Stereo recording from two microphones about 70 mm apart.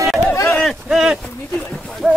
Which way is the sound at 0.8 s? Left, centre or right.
Centre.